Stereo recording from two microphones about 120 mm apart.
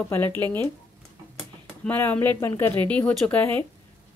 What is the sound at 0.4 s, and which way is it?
Speech, 15° left (ahead or behind).